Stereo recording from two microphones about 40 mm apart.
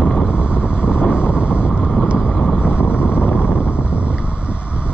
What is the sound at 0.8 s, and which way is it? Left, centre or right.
Vehicle, left.